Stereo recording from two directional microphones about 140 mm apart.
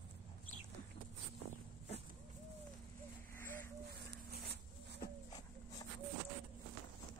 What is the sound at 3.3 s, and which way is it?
Bird, 15° left (ahead or behind).